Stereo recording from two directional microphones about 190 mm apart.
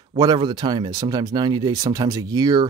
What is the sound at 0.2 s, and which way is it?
Speech, 25° right (ahead or behind).